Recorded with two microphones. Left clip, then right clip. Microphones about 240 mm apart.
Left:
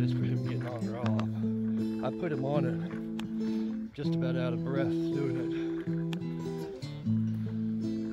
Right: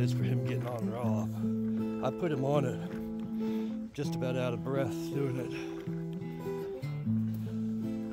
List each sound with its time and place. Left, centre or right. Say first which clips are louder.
2.0 s speech: right 3 dB; centre
4.0 s speech: left 1 dB; centre